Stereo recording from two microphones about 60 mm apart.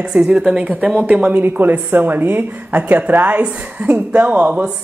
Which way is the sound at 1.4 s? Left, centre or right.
Right.